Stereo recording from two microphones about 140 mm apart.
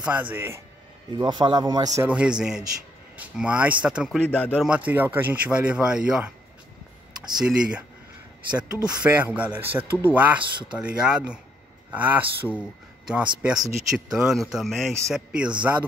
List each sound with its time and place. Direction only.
0.0 s speech: 10° right (ahead or behind)
1.1 s speech: 30° right (ahead or behind)
2.0 s speech: 10° right (ahead or behind)
4.3 s speech: 10° left (ahead or behind)
4.6 s speech: 10° right (ahead or behind)
7.3 s speech: 5° right (ahead or behind)
8.8 s speech: 10° right (ahead or behind)